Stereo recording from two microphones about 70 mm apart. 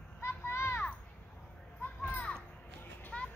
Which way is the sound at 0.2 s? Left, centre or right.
Left.